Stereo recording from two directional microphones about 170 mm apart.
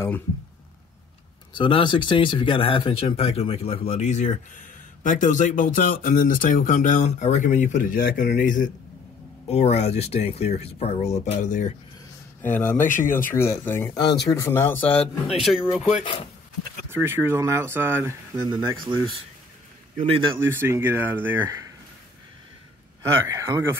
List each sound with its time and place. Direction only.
1.5 s speech: 30° left (ahead or behind); by 8.7 s 50° left (ahead or behind)
9.5 s speech: 40° left (ahead or behind)
12.4 s speech: 10° left (ahead or behind)
12.7 s speech: 50° left (ahead or behind)
13.3 s speech: 15° left (ahead or behind)
15.3 s speech: centre (ahead or behind)
16.9 s speech: 15° right (ahead or behind)
18.5 s speech: 25° right (ahead or behind)
20.0 s speech: 30° right (ahead or behind)
20.3 s speech: 15° right (ahead or behind)
23.2 s speech: 15° right (ahead or behind)